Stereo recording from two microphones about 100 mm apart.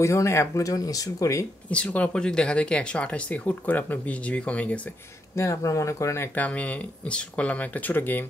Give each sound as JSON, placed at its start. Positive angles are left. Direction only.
{"t": 0.0, "sound": "speech", "side_deg": 30}
{"t": 1.7, "sound": "speech", "side_deg": 10}
{"t": 5.3, "sound": "speech", "side_deg": 30}